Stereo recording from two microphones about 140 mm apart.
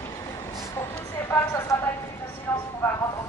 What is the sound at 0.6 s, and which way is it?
Speech, 20° left (ahead or behind).